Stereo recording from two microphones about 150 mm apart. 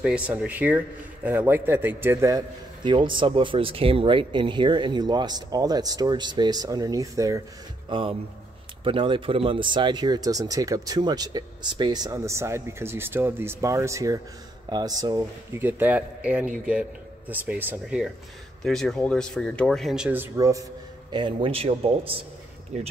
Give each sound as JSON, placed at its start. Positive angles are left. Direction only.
{"t": 0.0, "sound": "a man's voice", "side_deg": -10}
{"t": 2.8, "sound": "speech", "side_deg": -30}
{"t": 7.9, "sound": "speech", "side_deg": -35}
{"t": 15.6, "sound": "a man's voice", "side_deg": -10}
{"t": 21.1, "sound": "speech", "side_deg": -35}